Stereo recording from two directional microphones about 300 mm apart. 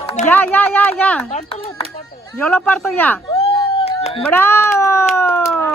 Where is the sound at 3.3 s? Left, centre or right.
Centre.